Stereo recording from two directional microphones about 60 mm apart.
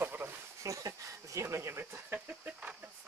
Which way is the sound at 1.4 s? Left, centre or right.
Right.